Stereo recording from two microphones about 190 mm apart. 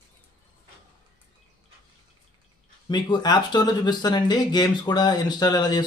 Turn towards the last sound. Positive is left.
turn(degrees=20)  # may be behind; listen again after turning